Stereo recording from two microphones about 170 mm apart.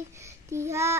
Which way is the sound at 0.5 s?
15° right (ahead or behind).